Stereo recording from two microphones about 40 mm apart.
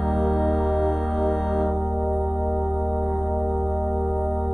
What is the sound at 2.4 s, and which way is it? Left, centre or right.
Music, centre.